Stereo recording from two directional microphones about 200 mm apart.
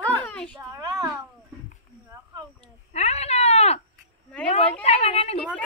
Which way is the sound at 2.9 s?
35° left (ahead or behind).